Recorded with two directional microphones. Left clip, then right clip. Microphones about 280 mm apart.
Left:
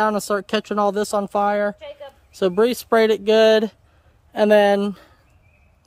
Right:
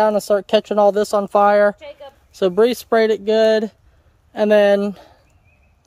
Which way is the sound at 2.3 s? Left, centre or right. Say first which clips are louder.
Right 3 dB; centre.